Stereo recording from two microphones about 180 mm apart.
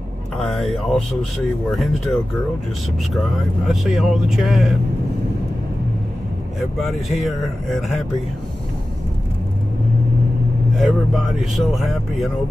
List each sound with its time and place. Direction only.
0.4 s speech: centre (ahead or behind)
3.6 s speech: centre (ahead or behind)
6.8 s speech: centre (ahead or behind)
10.8 s speech: centre (ahead or behind)